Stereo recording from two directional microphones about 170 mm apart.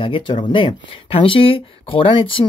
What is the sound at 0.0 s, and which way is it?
Speech, 30° left (ahead or behind).